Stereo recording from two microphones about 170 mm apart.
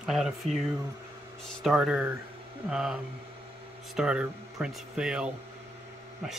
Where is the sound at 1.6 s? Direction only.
5° right (ahead or behind).